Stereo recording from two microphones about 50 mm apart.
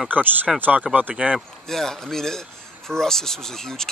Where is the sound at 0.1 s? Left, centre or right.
Right.